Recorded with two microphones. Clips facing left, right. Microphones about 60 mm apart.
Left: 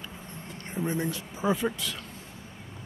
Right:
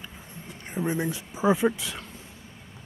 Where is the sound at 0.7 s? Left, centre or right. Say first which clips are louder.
Right 2 dB; centre.